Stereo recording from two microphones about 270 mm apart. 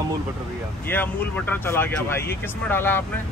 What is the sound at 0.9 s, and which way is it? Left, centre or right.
Speech, centre.